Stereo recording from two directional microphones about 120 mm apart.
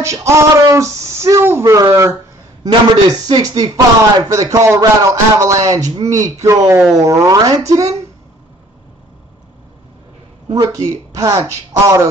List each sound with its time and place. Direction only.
0.0 s speech: 25° right (ahead or behind)
10.5 s speech: 30° right (ahead or behind)